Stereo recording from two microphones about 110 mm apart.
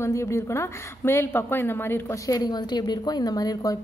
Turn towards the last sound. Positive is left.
turn(degrees=35)  # may be behind; listen again after turning